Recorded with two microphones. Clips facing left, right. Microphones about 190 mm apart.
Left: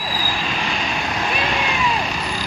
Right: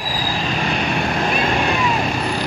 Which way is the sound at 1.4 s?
45° right (ahead or behind).